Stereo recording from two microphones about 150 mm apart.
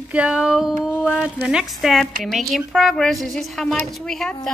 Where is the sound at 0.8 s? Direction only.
15° left (ahead or behind).